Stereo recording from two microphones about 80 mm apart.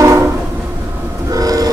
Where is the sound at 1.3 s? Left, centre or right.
Right.